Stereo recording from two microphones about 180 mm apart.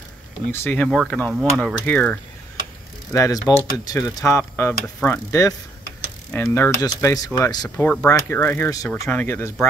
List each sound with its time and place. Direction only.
0.5 s speech: 10° left (ahead or behind)
3.1 s speech: 20° left (ahead or behind)
7.7 s speech: 10° left (ahead or behind)